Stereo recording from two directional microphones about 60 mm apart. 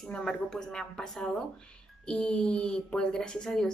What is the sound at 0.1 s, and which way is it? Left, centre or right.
Speech, centre.